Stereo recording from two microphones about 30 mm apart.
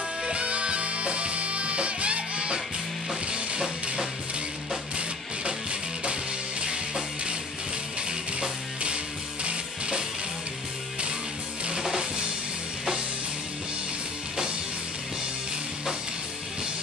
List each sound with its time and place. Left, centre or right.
0.2 s music: right
4.9 s music: right
8.4 s music: right
11.8 s music: centre